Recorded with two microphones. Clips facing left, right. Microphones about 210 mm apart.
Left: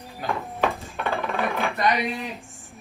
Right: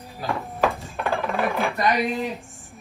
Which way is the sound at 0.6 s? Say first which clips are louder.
Right 3 dB; centre (ahead or behind).